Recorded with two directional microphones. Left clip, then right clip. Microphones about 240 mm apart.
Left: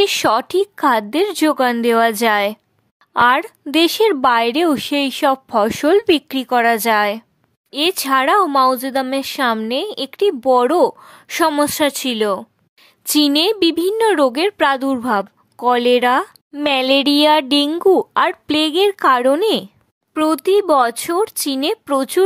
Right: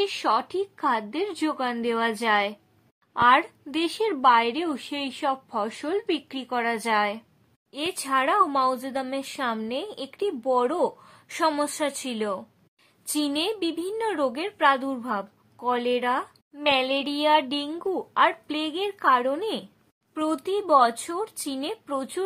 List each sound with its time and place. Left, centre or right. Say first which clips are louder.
0.0 s a woman's voice: left 9 dB; left